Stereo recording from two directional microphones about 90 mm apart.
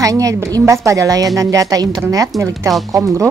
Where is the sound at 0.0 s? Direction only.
40° right (ahead or behind).